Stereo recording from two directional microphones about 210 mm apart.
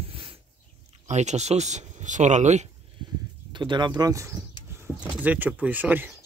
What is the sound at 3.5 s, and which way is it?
Speech, 20° right (ahead or behind).